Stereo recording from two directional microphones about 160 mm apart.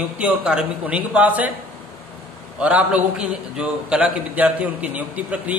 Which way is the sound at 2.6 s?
10° right (ahead or behind).